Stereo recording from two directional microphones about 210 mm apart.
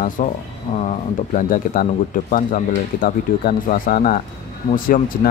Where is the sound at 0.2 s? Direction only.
35° left (ahead or behind).